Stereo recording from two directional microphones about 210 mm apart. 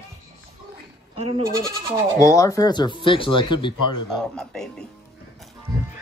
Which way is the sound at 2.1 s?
15° left (ahead or behind).